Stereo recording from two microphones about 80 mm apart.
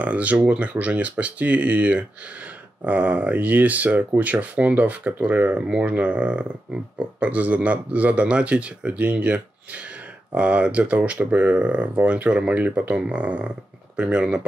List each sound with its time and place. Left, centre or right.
0.0 s speech: centre